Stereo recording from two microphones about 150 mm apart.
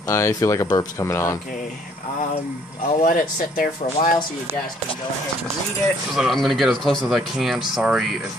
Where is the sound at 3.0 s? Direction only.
65° left (ahead or behind).